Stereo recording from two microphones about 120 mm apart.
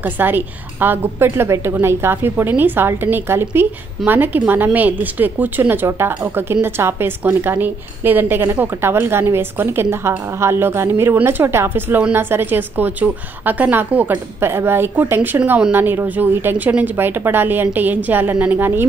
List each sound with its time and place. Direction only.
0.0 s a woman's voice: 15° right (ahead or behind)